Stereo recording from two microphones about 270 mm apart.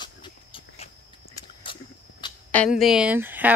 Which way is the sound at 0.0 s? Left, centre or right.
Centre.